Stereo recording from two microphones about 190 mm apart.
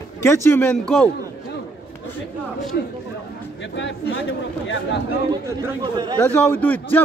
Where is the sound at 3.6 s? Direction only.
70° left (ahead or behind).